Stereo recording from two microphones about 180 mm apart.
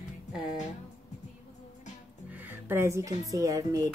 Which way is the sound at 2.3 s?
10° right (ahead or behind).